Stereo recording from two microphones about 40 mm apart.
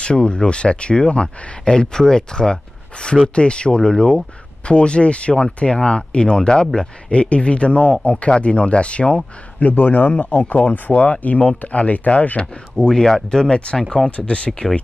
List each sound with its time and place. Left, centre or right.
0.0 s speech: left
7.1 s speech: left
9.6 s speech: left
12.7 s speech: centre
14.1 s speech: left